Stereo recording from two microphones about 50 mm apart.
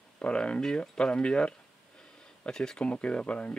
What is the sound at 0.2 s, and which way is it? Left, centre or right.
Speech, left.